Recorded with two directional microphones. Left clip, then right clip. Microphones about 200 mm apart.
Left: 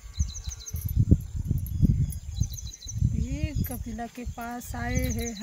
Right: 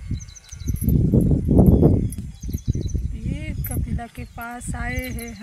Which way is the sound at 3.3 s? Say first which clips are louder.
Right 3 dB; centre (ahead or behind).